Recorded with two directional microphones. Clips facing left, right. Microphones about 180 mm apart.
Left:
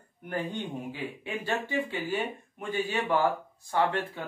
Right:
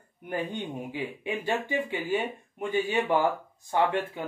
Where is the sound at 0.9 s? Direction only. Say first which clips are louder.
Right 3 dB; 15° right (ahead or behind).